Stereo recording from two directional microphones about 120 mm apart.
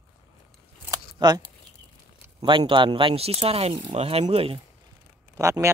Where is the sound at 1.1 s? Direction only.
35° right (ahead or behind); by 4.6 s 50° right (ahead or behind).